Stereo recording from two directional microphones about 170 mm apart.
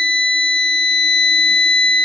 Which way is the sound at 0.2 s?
5° left (ahead or behind).